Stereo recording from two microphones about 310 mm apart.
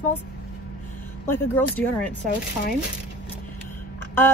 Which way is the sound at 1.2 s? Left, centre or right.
Centre.